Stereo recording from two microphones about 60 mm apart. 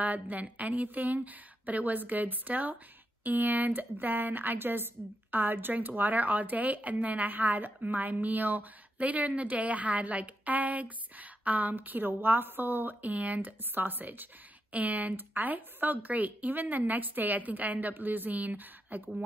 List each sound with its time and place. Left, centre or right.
0.0 s a woman's voice: right